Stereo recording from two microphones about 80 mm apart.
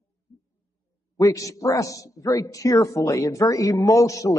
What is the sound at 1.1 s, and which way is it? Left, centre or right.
A man's voice, left.